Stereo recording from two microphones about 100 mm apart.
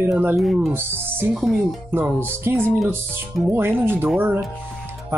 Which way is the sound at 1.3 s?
Centre (ahead or behind).